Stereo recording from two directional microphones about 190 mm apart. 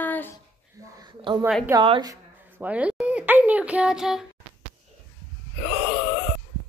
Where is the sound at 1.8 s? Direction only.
25° right (ahead or behind).